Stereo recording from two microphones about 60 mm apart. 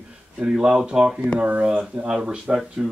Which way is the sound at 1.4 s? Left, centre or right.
Right.